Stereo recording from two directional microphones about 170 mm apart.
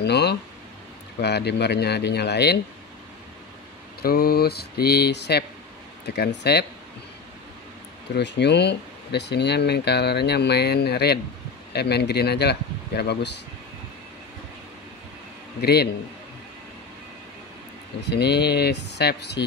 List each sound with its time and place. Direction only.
0.0 s speech: 75° left (ahead or behind)
4.0 s speech: 65° left (ahead or behind)
8.1 s speech: 85° left
15.6 s speech: 70° left (ahead or behind)
18.0 s speech: 75° left (ahead or behind)